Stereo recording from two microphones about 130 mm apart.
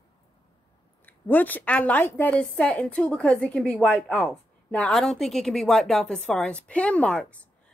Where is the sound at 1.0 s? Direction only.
15° left (ahead or behind).